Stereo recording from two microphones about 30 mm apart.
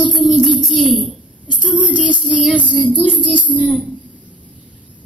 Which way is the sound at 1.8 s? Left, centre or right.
Right.